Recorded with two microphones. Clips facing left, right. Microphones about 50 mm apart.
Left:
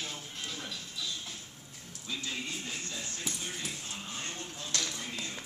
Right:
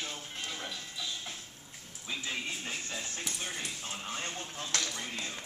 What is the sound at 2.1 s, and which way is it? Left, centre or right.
Music, centre.